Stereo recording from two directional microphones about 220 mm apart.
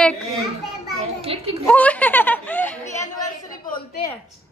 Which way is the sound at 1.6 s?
5° left (ahead or behind).